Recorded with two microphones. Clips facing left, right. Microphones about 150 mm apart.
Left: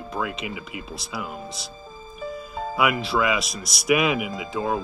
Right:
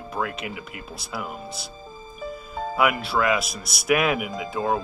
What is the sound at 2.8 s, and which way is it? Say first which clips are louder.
Speech: even; 5° right (ahead or behind).